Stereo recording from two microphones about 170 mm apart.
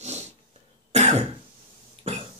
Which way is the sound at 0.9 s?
40° right (ahead or behind).